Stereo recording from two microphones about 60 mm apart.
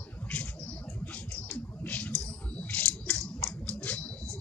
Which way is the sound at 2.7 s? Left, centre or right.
Left.